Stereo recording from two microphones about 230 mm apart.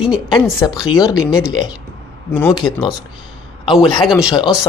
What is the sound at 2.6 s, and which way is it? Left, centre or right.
Speech, centre.